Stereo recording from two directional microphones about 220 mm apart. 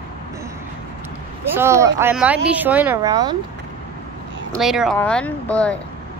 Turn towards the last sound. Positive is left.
turn(degrees=5)  # may be behind; listen again after turning